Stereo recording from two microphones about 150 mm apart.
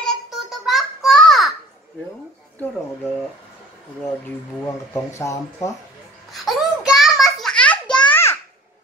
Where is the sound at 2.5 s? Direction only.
10° left (ahead or behind).